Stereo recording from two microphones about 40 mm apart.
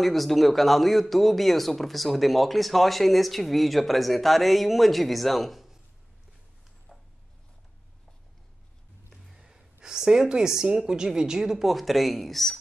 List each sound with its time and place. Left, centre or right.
0.0 s speech: centre
9.3 s gasp: centre
9.8 s speech: centre